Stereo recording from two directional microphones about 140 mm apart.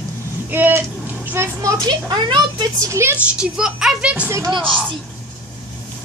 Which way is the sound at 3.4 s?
5° right (ahead or behind).